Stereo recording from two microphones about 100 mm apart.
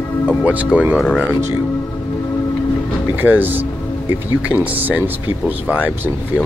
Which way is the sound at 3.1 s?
15° right (ahead or behind).